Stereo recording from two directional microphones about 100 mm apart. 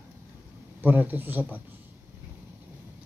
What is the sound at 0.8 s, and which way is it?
Speech, 20° right (ahead or behind).